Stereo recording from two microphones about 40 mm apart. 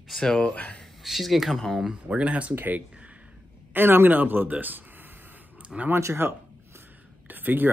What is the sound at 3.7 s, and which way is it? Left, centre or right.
Speech, right.